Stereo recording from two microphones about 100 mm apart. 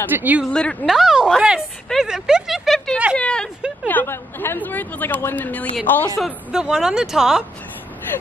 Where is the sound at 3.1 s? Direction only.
10° left (ahead or behind).